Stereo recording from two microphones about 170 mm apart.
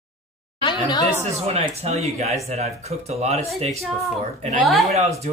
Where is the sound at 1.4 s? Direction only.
35° right (ahead or behind).